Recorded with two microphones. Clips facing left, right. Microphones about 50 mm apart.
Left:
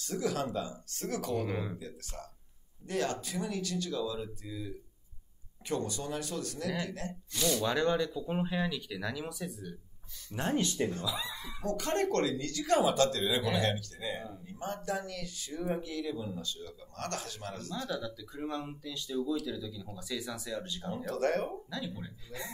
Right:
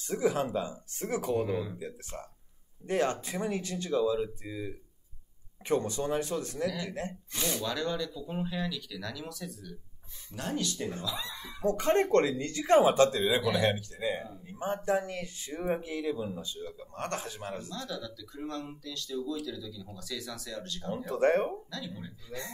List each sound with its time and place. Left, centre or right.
0.0 s speech: right
7.6 s speech: left
10.3 s speech: left
11.1 s speech: centre
11.6 s speech: right
17.8 s speech: centre
20.9 s speech: right
21.6 s speech: centre